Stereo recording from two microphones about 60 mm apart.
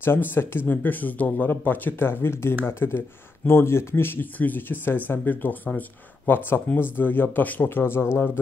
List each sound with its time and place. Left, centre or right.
0.0 s speech: left